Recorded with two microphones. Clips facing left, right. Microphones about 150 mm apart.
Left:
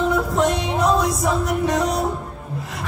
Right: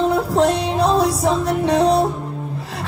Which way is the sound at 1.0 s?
30° right (ahead or behind).